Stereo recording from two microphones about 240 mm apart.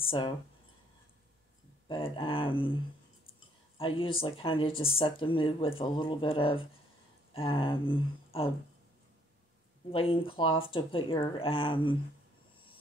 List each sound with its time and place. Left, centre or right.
0.0 s speech: left
1.9 s speech: left
9.8 s speech: left